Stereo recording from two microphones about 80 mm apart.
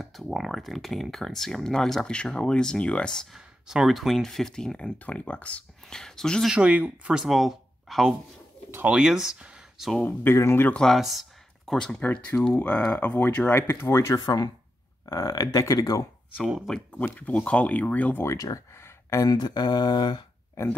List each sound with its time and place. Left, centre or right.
0.0 s speech: centre
3.3 s speech: centre
6.4 s speech: centre
7.2 s speech: centre
10.0 s speech: left
10.7 s speech: centre
11.0 s speech: centre
12.0 s speech: centre; by 14.1 s left
14.1 s speech: left
16.3 s speech: centre
16.6 s speech: centre
18.2 s speech: left
19.2 s mantra: left
20.6 s speech: left